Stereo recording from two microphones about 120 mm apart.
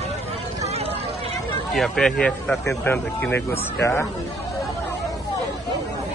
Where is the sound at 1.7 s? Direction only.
Centre (ahead or behind); by 4.0 s 20° left (ahead or behind).